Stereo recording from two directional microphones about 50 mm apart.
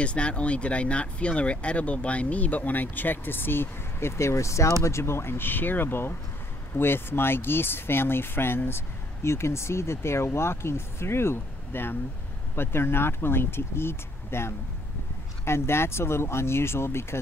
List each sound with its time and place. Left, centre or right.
0.0 s speech: left
4.2 s speech: left
4.8 s speech: left